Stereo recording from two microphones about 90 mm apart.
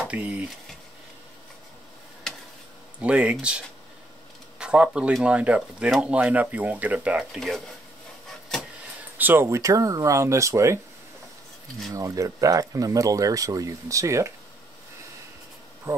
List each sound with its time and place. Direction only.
0.1 s speech: 15° right (ahead or behind)
3.0 s speech: 15° right (ahead or behind)
7.3 s speech: centre (ahead or behind)
9.2 s speech: 25° right (ahead or behind)
11.9 s speech: 40° right (ahead or behind)